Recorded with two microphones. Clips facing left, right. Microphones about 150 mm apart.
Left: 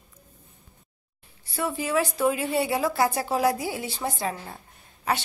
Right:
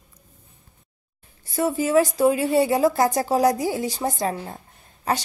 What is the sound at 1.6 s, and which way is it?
A woman's voice, 40° right (ahead or behind).